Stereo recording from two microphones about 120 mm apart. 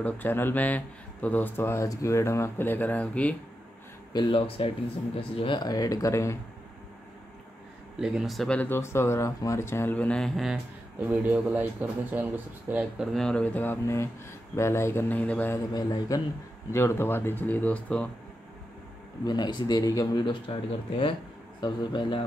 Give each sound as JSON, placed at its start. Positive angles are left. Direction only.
{"t": 0.0, "sound": "speech", "side_deg": 15}
{"t": 4.1, "sound": "speech", "side_deg": 40}
{"t": 8.0, "sound": "speech", "side_deg": -5}
{"t": 8.5, "sound": "speech", "side_deg": 20}
{"t": 10.5, "sound": "speech", "side_deg": -10}
{"t": 13.0, "sound": "speech", "side_deg": 5}
{"t": 15.7, "sound": "speech", "side_deg": 30}
{"t": 16.7, "sound": "speech", "side_deg": 20}
{"t": 19.2, "sound": "speech", "side_deg": 35}
{"t": 20.5, "sound": "speech", "side_deg": 50}